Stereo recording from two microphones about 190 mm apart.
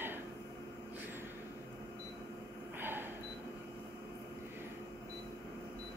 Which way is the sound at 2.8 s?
10° right (ahead or behind).